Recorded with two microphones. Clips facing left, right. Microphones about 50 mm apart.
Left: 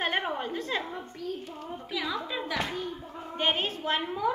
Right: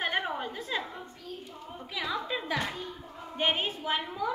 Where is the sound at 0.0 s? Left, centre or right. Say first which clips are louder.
Left 1 dB; centre.